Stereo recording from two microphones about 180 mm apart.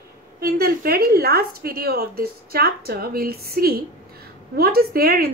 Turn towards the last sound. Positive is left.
turn(degrees=-60)  # may be behind; listen again after turning